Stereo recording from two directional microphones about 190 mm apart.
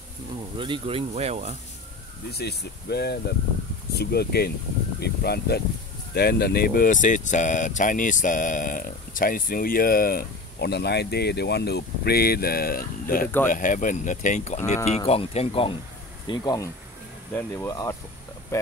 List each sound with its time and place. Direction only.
0.6 s speech: 25° right (ahead or behind)
2.3 s speech: 60° left (ahead or behind); by 15.7 s 30° left (ahead or behind)
16.3 s speech: 20° left (ahead or behind)